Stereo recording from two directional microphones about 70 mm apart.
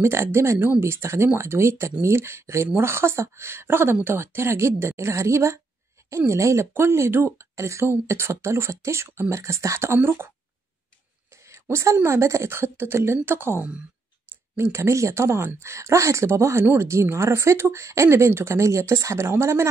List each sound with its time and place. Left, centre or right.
0.0 s speech: right
11.7 s speech: right
14.6 s speech: right